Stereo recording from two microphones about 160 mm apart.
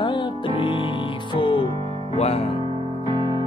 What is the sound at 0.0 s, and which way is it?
Music, 30° left (ahead or behind).